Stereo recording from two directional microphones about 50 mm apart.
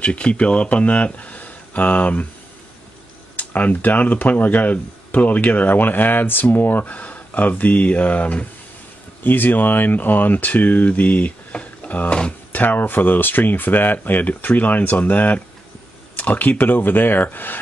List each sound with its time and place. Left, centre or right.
0.0 s speech: left
3.3 s speech: left
9.2 s speech: left